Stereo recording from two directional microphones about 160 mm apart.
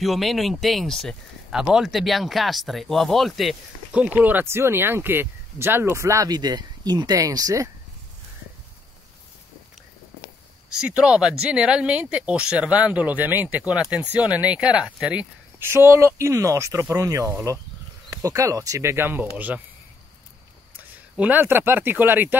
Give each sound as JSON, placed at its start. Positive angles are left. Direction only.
{"t": 0.0, "sound": "speech", "side_deg": 0}
{"t": 10.8, "sound": "speech", "side_deg": -5}
{"t": 20.7, "sound": "speech", "side_deg": -10}